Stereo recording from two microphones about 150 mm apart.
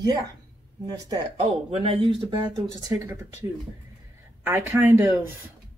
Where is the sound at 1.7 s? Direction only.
40° right (ahead or behind).